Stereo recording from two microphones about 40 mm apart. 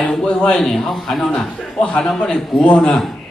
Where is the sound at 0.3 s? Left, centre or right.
Left.